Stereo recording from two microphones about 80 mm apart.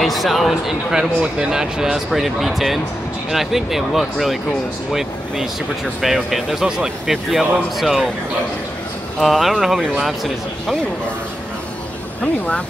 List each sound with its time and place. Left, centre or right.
0.0 s speech: centre
5.9 s speech: centre
9.2 s speech: centre
12.2 s speech: centre